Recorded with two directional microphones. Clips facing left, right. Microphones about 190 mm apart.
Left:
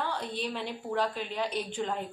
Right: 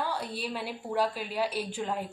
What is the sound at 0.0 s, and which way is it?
A woman's voice, 10° right (ahead or behind).